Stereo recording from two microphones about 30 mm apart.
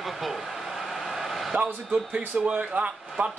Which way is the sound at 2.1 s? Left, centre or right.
Right.